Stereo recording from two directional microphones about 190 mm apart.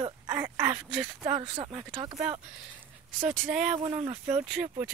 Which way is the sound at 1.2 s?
30° right (ahead or behind).